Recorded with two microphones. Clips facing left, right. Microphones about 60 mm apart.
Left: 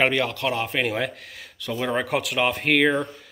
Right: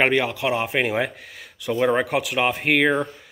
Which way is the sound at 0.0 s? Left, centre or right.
Centre.